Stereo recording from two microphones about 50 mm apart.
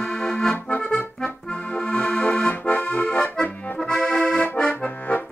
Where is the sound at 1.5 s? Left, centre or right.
Left.